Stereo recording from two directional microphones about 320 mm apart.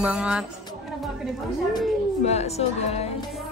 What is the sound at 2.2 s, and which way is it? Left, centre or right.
Speech, centre.